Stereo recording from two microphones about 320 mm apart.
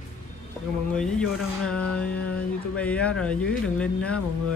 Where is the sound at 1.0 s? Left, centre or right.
Centre.